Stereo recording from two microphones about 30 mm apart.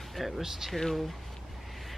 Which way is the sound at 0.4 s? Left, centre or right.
Centre.